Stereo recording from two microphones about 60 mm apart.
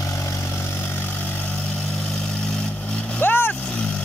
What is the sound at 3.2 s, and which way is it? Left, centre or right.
Vehicle, left.